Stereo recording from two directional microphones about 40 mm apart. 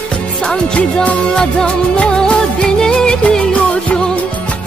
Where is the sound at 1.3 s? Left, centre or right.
Centre.